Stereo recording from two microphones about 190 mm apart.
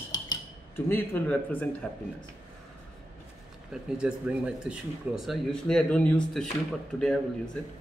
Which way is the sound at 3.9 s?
5° right (ahead or behind).